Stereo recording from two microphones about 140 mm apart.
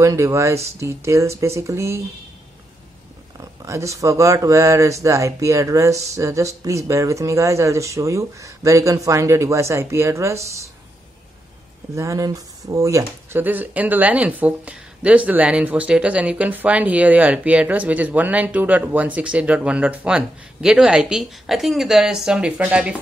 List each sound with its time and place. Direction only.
0.0 s speech: 20° right (ahead or behind)
3.3 s speech: 20° right (ahead or behind)
11.9 s speech: 20° right (ahead or behind)